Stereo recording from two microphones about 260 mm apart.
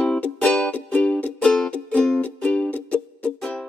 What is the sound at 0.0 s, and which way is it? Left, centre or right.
Music, centre.